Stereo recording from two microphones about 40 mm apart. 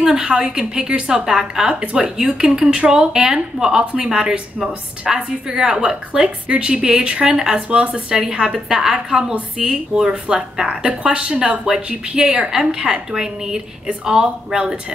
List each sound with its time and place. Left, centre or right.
0.0 s a woman's voice: centre
3.8 s speech: right
6.2 s speech: right
12.4 s speech: centre